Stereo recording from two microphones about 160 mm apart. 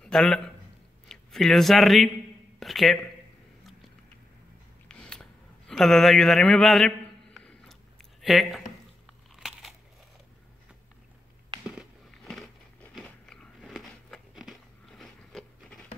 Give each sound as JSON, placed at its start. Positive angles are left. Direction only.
{"t": 0.0, "sound": "a man's voice", "side_deg": 5}
{"t": 4.8, "sound": "a sound", "side_deg": 5}
{"t": 8.2, "sound": "speech", "side_deg": 0}
{"t": 9.3, "sound": "crunch", "side_deg": 0}
{"t": 11.8, "sound": "a sound", "side_deg": 0}
{"t": 12.9, "sound": "biting", "side_deg": 5}